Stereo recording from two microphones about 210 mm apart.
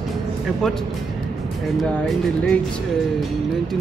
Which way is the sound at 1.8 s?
Centre (ahead or behind).